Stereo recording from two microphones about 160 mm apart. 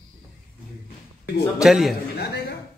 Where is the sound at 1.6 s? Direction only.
Centre (ahead or behind).